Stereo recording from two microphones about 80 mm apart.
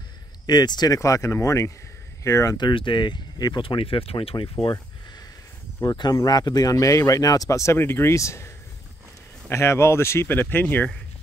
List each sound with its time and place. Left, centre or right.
0.5 s speech: left
0.9 s speech: left
2.5 s speech: left
5.8 s speech: left
9.5 s speech: left